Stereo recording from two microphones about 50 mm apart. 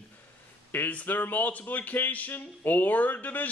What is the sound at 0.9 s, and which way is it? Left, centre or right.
Speech, left.